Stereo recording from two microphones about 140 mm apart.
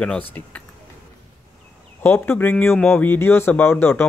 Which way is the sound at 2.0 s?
15° left (ahead or behind).